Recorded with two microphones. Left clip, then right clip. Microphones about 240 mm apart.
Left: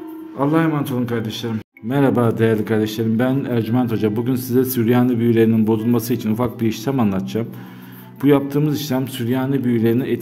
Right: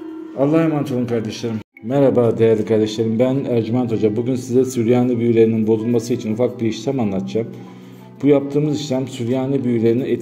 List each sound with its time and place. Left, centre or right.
0.4 s a man's voice: centre
2.0 s speech: left
2.5 s a man's voice: centre
8.2 s speech: left